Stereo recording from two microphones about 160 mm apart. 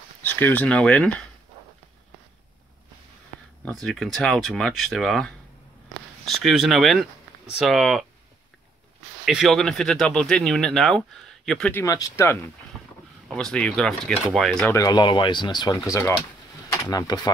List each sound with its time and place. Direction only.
0.2 s speech: 10° left (ahead or behind)
3.8 s speech: centre (ahead or behind)
9.2 s speech: centre (ahead or behind)
11.8 s speech: 20° left (ahead or behind)
13.3 s speech: 5° left (ahead or behind)
14.7 s speech: 20° left (ahead or behind)